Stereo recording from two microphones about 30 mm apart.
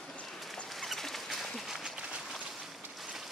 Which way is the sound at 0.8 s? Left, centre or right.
Centre.